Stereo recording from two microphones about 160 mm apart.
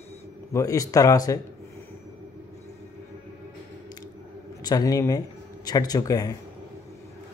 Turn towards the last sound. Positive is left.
turn(degrees=25)  # may be behind; listen again after turning